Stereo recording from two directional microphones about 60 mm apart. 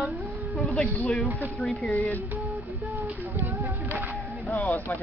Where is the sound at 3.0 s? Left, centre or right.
Right.